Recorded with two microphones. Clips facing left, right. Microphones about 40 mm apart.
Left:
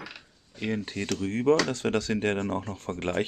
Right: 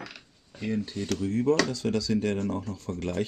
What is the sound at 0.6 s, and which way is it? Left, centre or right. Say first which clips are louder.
Speech: even; left.